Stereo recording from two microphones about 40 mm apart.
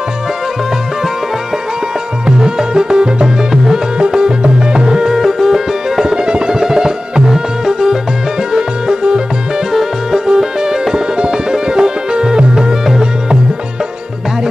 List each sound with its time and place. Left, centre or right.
2.2 s music: centre
6.1 s music: right